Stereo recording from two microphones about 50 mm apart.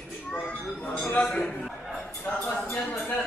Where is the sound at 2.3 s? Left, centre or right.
Left.